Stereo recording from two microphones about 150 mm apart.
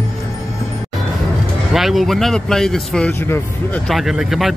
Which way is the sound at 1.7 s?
Centre (ahead or behind).